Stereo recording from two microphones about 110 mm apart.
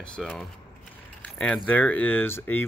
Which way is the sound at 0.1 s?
5° left (ahead or behind).